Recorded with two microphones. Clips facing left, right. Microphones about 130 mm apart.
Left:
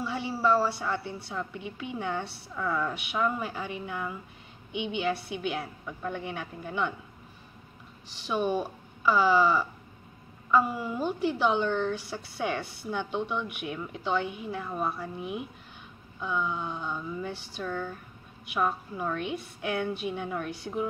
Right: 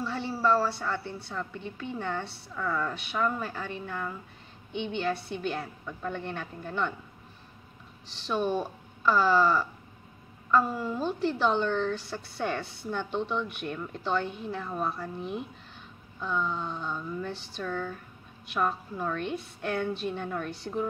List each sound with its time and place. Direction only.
0.0 s a woman's voice: 10° left (ahead or behind)
8.1 s a woman's voice: 5° left (ahead or behind)